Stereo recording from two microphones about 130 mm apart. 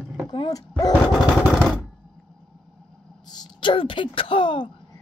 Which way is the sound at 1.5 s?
Centre (ahead or behind).